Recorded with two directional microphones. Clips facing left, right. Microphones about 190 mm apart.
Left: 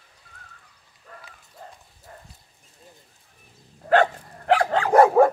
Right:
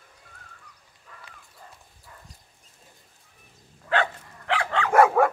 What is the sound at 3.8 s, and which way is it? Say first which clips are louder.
Dog: left 7 dB; 45° left (ahead or behind).